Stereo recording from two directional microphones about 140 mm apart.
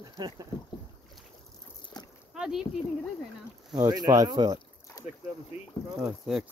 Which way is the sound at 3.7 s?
25° right (ahead or behind).